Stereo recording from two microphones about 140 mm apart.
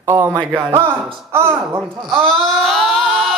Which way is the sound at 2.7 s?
Centre (ahead or behind).